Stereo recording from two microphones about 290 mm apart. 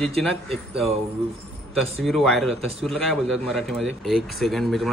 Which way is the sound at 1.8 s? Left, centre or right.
Centre.